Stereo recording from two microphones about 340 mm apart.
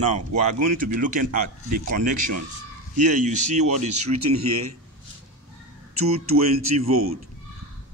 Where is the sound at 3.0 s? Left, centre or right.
Right.